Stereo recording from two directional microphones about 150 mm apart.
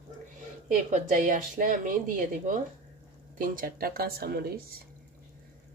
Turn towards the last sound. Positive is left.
turn(degrees=-90)